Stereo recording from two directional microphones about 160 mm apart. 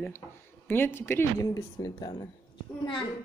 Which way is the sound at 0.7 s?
15° left (ahead or behind).